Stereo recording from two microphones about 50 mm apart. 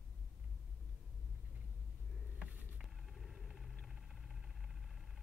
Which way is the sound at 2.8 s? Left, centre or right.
Centre.